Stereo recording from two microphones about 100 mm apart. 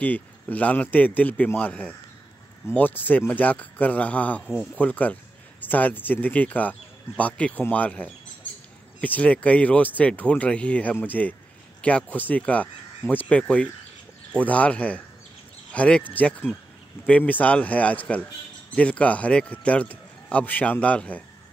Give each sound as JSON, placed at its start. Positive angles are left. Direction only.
{"t": 0.0, "sound": "speech", "side_deg": 15}